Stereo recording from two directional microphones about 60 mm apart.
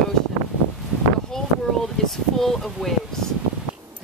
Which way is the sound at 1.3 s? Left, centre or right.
Centre.